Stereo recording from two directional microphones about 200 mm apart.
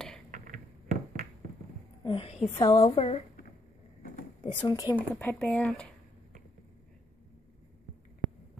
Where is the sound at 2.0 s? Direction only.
30° left (ahead or behind).